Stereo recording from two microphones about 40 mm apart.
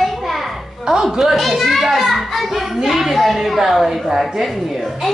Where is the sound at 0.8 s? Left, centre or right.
Centre.